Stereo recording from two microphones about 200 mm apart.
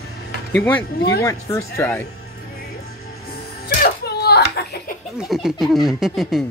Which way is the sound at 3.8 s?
55° left (ahead or behind).